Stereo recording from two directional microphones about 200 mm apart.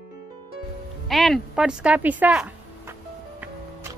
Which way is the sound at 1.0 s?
Centre (ahead or behind).